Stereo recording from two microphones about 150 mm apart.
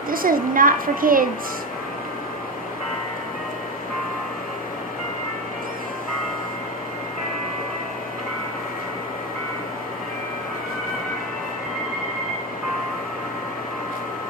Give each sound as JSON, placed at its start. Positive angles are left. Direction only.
{"t": 0.1, "sound": "a woman's voice", "side_deg": -70}